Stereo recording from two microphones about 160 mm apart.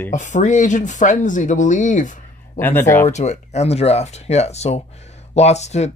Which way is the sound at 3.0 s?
45° left (ahead or behind).